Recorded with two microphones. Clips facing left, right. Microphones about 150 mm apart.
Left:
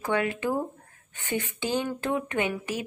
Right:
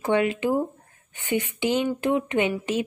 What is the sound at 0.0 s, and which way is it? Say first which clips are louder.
A woman's voice: right 5 dB; 20° right (ahead or behind).